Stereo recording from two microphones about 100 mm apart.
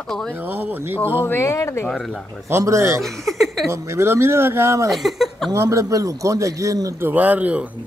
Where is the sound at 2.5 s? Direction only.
30° right (ahead or behind).